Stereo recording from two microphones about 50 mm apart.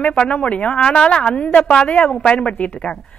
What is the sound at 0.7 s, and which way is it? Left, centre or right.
A man's voice, centre.